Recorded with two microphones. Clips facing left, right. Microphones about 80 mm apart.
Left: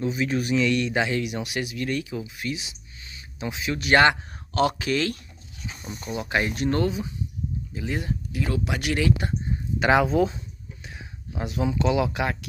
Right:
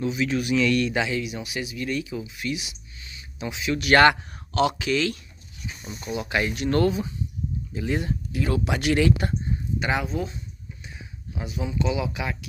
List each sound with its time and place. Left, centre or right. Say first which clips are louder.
0.0 s speech: even; left
0.7 s speech: right 1 dB; centre
0.9 s speech: left 1 dB; left
1.2 s speech: left 2 dB; left
3.9 s speech: right 2 dB; centre
4.6 s speech: even; left
6.7 s speech: right 5 dB; centre
7.9 s speech: right 3 dB; centre
9.8 s speech: left 7 dB; left
10.8 s a sound: left 3 dB; left
11.4 s speech: left 3 dB; left